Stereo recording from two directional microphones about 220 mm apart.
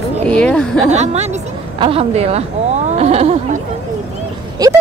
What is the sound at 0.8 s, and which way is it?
A woman's voice, 30° right (ahead or behind).